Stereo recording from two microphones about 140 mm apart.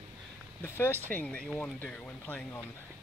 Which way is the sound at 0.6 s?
15° left (ahead or behind).